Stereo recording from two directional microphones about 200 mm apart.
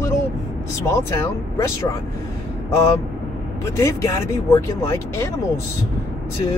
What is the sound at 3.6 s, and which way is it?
Speech, 15° left (ahead or behind).